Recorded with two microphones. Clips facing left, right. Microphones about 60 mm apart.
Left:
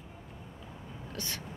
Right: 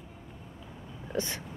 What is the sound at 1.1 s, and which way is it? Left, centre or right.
Vehicle, right.